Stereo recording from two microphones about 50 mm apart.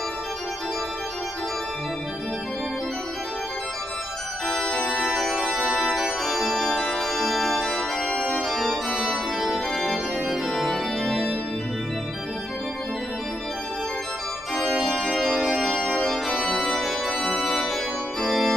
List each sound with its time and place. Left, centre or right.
4.6 s organ: centre
4.9 s organ: centre
8.9 s organ: centre
14.5 s organ: centre
15.3 s organ: right
16.0 s organ: centre